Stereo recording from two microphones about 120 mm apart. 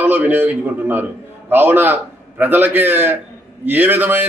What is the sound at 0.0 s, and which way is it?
A man's voice, 15° right (ahead or behind).